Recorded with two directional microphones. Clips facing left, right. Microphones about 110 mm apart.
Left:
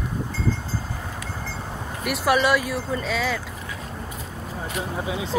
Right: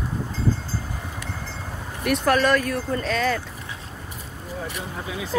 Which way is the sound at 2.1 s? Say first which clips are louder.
Right 1 dB; 10° left (ahead or behind).